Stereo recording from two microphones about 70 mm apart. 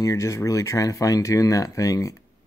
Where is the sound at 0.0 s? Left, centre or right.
Left.